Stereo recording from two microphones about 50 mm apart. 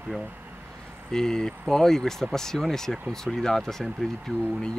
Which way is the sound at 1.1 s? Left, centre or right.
Centre.